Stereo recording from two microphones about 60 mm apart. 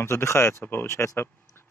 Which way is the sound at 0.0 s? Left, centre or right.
Left.